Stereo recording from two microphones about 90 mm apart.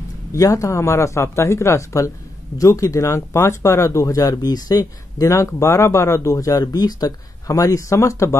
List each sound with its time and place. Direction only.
0.3 s speech: 40° left (ahead or behind)